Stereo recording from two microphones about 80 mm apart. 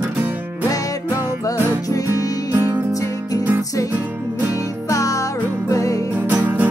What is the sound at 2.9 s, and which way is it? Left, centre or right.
Music, left.